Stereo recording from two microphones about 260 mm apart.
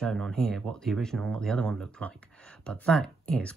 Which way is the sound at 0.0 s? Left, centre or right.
Centre.